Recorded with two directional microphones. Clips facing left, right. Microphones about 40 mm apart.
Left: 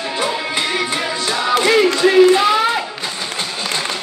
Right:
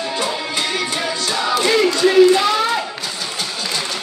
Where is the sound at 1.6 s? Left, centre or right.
Left.